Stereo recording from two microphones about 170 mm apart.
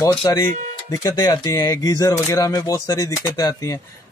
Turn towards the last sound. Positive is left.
turn(degrees=20)  # may be behind; listen again after turning